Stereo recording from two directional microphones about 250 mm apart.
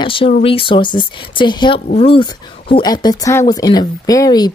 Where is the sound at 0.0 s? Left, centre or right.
Left.